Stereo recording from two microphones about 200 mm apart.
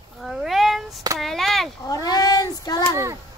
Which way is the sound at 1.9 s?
20° left (ahead or behind).